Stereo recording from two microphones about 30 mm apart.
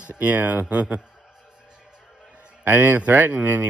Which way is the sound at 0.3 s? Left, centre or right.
Right.